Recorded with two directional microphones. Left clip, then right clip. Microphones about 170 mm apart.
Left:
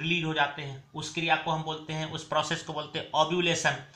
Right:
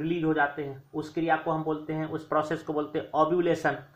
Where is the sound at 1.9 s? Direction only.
30° right (ahead or behind).